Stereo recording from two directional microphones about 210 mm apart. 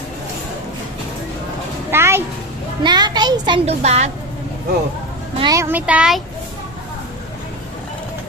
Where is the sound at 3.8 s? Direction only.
35° right (ahead or behind).